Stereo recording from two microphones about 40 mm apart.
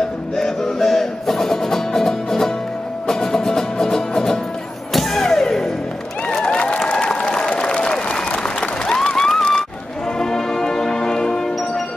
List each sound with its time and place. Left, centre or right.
0.4 s music: centre
4.9 s a sound: centre
6.4 s applause: left
10.1 s music: centre